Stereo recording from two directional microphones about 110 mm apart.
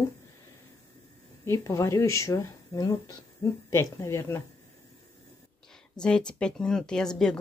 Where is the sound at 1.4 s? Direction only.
25° left (ahead or behind).